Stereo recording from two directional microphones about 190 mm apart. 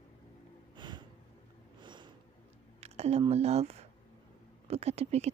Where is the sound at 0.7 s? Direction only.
25° right (ahead or behind).